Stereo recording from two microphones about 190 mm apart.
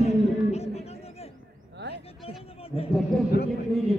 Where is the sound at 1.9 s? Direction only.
30° left (ahead or behind).